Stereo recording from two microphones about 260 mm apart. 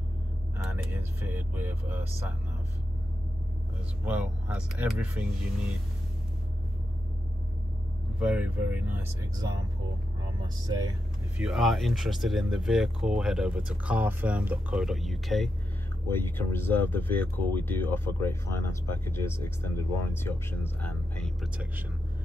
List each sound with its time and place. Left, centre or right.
0.7 s speech: centre
4.0 s speech: centre
8.2 s speech: centre
11.3 s speech: centre